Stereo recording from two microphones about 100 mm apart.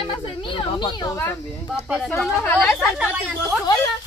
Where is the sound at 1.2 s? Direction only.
25° left (ahead or behind).